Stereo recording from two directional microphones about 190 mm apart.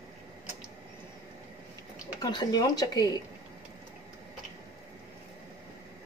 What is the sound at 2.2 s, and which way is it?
Speech, 20° left (ahead or behind).